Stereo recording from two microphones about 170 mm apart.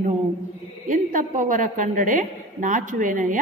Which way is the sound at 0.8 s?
50° right (ahead or behind).